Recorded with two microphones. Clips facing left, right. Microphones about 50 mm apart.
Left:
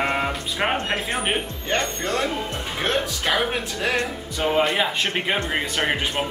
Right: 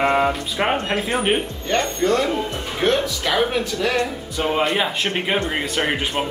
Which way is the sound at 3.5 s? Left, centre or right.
Centre.